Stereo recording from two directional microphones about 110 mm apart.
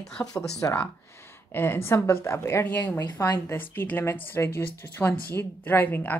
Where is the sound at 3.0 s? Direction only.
35° left (ahead or behind).